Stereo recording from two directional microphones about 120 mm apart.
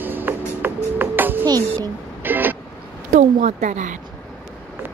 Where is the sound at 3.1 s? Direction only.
80° right.